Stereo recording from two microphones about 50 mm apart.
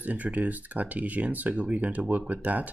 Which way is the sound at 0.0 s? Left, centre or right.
Right.